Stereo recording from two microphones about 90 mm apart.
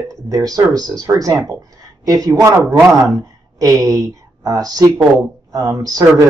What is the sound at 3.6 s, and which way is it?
Speech, 40° right (ahead or behind).